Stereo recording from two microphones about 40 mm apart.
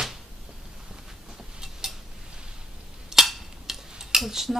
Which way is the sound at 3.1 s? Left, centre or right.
Centre.